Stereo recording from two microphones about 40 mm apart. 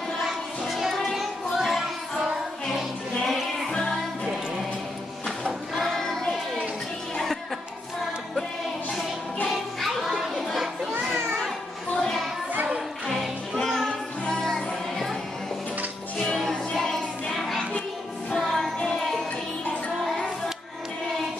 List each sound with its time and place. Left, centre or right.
0.7 s child singing: centre
1.1 s music: centre
3.7 s music: centre
5.4 s music: centre
9.8 s music: centre
10.4 s chatter: centre
12.0 s music: centre
16.3 s music: centre
16.8 s child singing: centre
18.4 s music: centre